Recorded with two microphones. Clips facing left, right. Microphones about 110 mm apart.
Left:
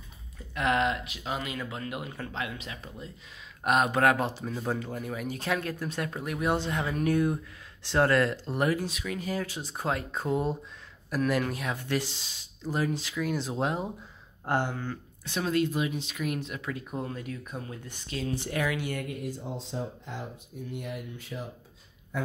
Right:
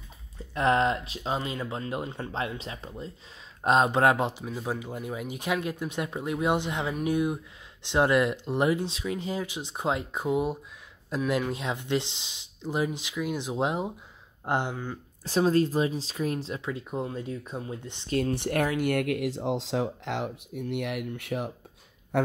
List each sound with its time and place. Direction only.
0.6 s speech: 35° right (ahead or behind); by 15.0 s 15° right (ahead or behind)
15.2 s speech: 35° right (ahead or behind)
18.1 s speech: 60° right (ahead or behind)